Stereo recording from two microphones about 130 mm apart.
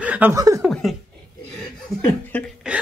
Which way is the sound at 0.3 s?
25° right (ahead or behind).